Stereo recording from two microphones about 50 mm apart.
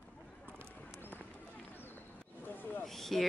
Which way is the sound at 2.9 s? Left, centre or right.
Centre.